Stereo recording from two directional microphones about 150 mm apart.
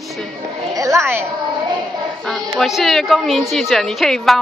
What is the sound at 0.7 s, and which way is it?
Speech, 20° right (ahead or behind).